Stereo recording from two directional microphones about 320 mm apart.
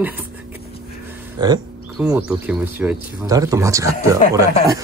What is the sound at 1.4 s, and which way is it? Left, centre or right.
Speech, centre.